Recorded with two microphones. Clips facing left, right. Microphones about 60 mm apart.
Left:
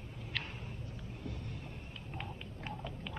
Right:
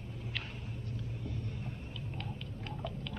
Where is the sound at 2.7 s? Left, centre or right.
Centre.